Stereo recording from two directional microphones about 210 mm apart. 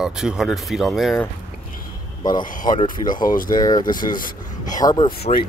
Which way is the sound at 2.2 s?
20° left (ahead or behind).